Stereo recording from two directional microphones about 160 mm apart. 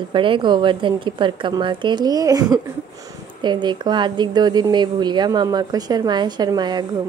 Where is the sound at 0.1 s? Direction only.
30° right (ahead or behind).